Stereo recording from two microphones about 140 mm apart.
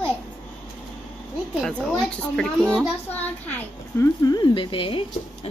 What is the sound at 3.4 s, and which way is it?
Speech, 15° left (ahead or behind).